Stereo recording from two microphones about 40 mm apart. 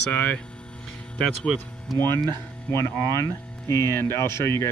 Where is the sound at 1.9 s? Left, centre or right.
Left.